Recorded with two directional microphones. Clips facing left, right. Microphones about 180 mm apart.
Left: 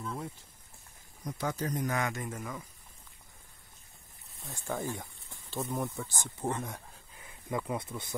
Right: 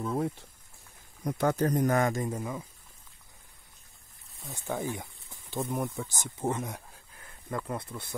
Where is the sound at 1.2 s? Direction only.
60° right (ahead or behind).